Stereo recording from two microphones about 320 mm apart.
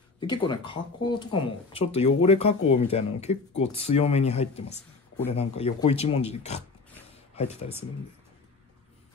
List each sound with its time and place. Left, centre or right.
0.2 s speech: centre